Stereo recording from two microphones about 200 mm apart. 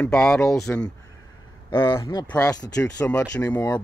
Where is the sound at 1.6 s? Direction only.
25° left (ahead or behind).